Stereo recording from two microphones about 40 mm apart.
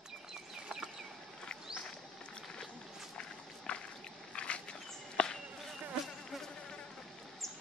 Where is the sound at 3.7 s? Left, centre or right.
Left.